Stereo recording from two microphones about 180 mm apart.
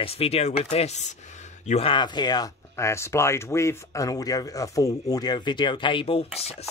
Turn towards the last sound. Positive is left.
turn(degrees=30)  # may be behind; listen again after turning